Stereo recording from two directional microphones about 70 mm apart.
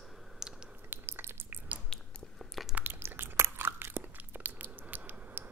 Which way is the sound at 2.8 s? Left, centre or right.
Right.